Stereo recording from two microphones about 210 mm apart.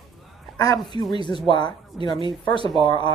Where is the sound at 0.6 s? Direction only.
20° left (ahead or behind).